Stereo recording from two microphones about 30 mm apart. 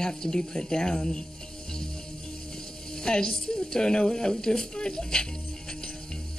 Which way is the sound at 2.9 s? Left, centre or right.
Left.